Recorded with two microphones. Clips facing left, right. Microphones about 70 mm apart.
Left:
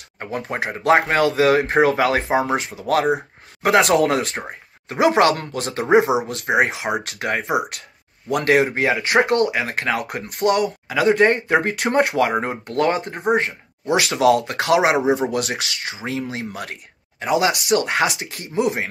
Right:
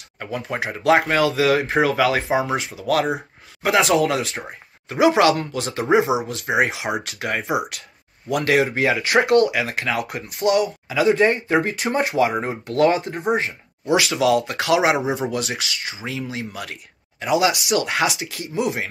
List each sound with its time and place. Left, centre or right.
0.2 s speech: left
3.6 s speech: left